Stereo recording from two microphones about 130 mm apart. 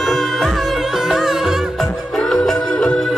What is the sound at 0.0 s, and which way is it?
Music, 5° left (ahead or behind).